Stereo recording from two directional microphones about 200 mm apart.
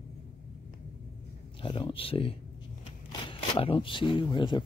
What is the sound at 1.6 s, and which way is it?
Speech, 25° left (ahead or behind).